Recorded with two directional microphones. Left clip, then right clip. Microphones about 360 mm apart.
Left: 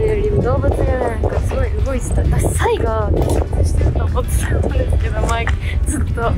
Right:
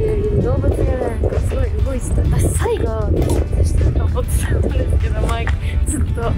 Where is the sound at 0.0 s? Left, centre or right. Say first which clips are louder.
Left 2 dB; centre.